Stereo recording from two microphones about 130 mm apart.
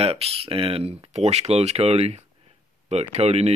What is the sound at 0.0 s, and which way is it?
Speech, 50° right (ahead or behind).